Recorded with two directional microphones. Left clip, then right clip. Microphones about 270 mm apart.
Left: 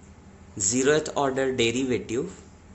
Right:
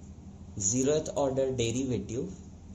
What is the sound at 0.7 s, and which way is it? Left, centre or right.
Speech, left.